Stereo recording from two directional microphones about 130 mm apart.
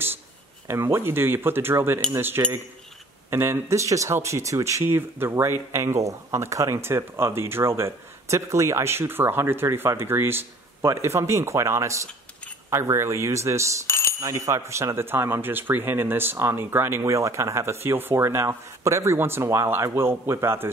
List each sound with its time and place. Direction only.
0.7 s speech: 20° right (ahead or behind)
13.8 s a sound: 20° left (ahead or behind)
14.2 s speech: 25° right (ahead or behind)